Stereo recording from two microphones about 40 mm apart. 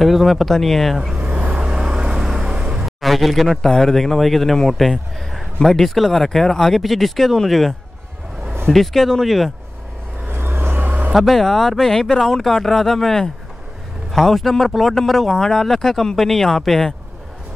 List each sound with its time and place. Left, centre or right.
0.0 s speech: centre
1.1 s vehicle: right
1.6 s vehicle: centre
2.8 s speech: centre
8.7 s speech: centre
10.4 s vehicle: right
10.8 s vehicle: right
11.1 s speech: centre